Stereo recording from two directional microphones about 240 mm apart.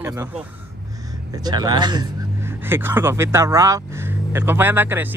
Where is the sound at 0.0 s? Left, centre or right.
Centre.